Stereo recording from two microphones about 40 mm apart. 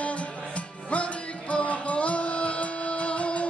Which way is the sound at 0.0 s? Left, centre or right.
Left.